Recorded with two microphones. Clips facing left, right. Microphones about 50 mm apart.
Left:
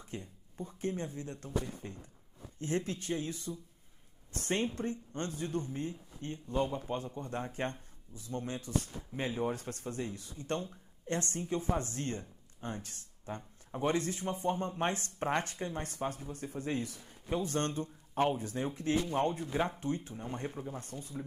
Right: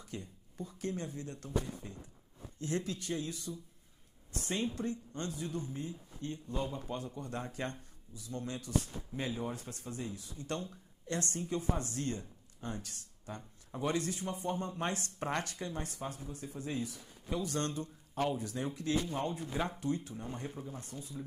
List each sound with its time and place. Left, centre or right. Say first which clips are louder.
0.0 s speech: left 1 dB; left
4.3 s speech: left 3 dB; left
10.4 s speech: left 3 dB; left
12.5 s a sound: left 1 dB; left
13.7 s speech: left 2 dB; left
15.8 s speech: left 4 dB; left
17.4 s speech: left 2 dB; left